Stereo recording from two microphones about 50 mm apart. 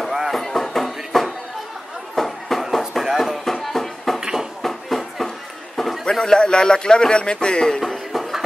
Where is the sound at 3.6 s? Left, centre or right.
Centre.